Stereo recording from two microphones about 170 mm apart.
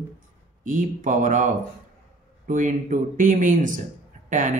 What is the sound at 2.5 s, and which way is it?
Speech, 50° right (ahead or behind).